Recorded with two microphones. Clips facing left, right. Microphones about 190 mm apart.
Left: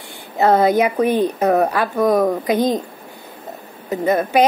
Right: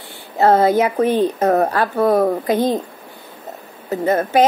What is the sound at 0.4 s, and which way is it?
A woman's voice, 15° left (ahead or behind).